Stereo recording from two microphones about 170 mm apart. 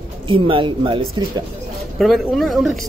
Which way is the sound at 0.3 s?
30° right (ahead or behind).